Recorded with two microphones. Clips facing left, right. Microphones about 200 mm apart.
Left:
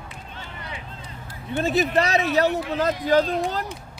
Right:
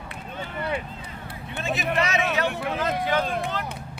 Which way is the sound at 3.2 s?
55° right (ahead or behind).